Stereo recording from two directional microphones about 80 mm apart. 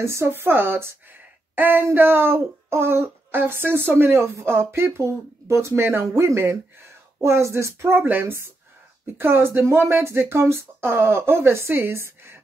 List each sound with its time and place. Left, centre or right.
0.0 s speech: right